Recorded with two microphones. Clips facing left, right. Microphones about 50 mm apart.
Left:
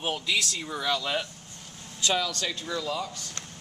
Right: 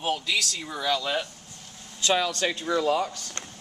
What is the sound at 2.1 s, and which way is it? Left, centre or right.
Speech, right.